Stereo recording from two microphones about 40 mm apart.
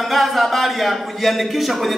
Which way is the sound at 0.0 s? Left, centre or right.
Centre.